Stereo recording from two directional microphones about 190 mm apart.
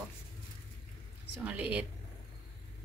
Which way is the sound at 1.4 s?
5° right (ahead or behind).